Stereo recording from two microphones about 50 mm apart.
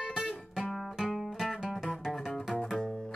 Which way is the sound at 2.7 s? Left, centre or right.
Centre.